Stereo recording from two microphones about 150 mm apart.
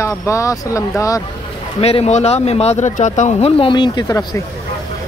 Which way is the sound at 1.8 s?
40° left (ahead or behind).